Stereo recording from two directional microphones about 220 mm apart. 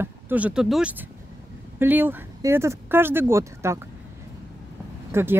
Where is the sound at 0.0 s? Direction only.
5° right (ahead or behind).